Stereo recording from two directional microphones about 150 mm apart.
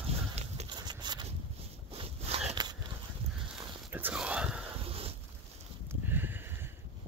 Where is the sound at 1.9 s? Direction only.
40° right (ahead or behind).